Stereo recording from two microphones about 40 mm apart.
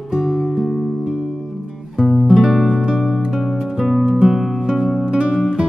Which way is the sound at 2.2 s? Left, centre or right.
Centre.